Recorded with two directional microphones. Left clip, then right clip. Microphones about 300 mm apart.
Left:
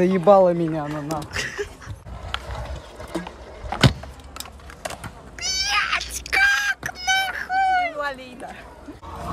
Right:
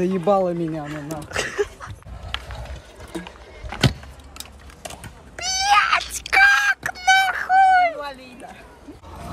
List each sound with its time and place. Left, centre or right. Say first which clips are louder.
0.1 s speech: left 7 dB; centre
3.7 s vehicle: left 3 dB; left
4.4 s a sound: left 4 dB; centre